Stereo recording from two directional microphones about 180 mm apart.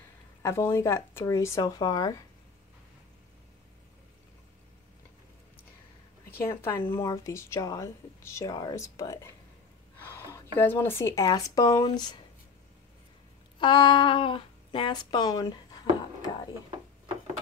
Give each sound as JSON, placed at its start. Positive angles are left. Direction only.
{"t": 0.4, "sound": "speech", "side_deg": 15}
{"t": 6.3, "sound": "speech", "side_deg": 15}
{"t": 13.6, "sound": "speech", "side_deg": 25}